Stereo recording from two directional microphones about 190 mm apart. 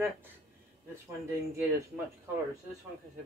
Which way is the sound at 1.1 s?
15° right (ahead or behind).